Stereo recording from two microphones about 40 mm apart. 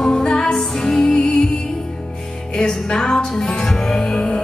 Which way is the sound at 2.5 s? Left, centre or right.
Left.